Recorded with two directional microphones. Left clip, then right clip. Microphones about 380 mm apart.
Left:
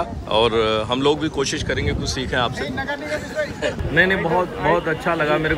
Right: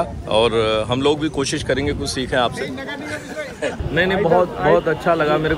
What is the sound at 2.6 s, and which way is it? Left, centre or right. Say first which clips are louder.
Speech: left 2 dB; centre.